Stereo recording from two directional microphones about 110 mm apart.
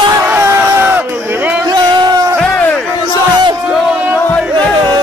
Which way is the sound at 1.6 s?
40° right (ahead or behind).